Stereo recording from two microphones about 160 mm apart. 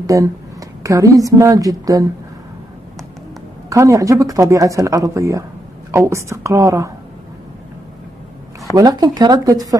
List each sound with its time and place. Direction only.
0.0 s a woman's voice: 20° right (ahead or behind)
3.7 s speech: 20° right (ahead or behind)
8.7 s speech: 25° right (ahead or behind)